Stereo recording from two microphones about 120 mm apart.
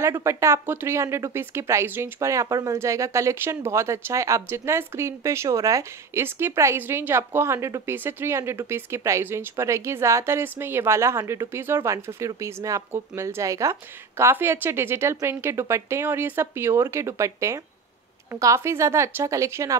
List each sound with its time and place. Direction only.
0.0 s speech: 25° right (ahead or behind)